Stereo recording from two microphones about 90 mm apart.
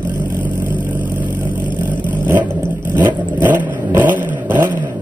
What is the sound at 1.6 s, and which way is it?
Vehicle, 60° left (ahead or behind).